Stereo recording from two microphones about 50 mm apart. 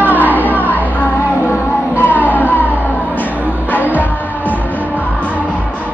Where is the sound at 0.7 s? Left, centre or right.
Left.